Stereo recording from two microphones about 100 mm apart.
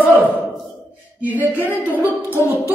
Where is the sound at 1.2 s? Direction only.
15° right (ahead or behind).